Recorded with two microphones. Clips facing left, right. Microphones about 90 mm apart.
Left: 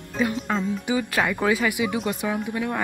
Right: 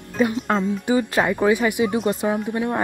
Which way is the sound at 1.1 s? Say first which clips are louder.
Right 2 dB; 20° right (ahead or behind).